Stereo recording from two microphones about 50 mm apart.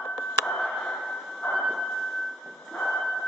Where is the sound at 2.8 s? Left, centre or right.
Centre.